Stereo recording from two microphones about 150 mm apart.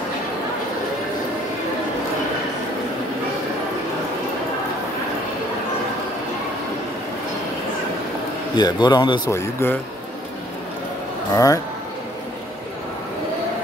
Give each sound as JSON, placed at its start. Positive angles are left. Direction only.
{"t": 8.5, "sound": "a man's voice", "side_deg": 30}
{"t": 9.3, "sound": "speech", "side_deg": 15}
{"t": 11.3, "sound": "a man's voice", "side_deg": 20}